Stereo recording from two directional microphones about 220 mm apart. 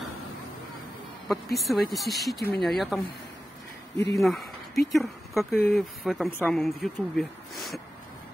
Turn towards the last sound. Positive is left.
turn(degrees=0)  # may be behind; listen again after turning